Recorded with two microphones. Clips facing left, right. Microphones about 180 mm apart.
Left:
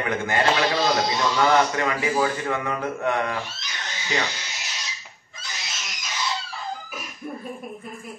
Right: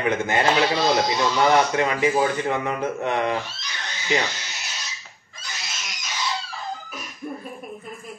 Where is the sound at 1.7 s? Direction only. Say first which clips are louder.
Right 3 dB; 20° right (ahead or behind).